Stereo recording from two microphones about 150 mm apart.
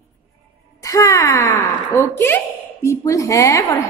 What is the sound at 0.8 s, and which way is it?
A woman's voice, 25° left (ahead or behind).